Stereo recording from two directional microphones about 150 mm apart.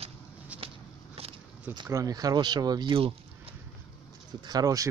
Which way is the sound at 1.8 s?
20° right (ahead or behind).